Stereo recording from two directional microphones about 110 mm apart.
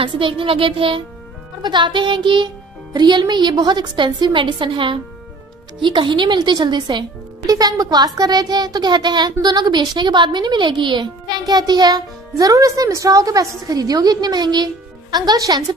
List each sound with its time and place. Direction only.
0.0 s music: 50° right (ahead or behind)
5.8 s speech: 45° right (ahead or behind)